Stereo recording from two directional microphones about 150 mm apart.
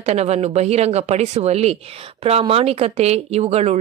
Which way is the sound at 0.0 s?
45° right (ahead or behind).